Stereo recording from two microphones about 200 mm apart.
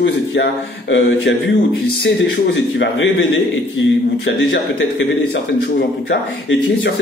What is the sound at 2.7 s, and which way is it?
A man's voice, 65° left (ahead or behind).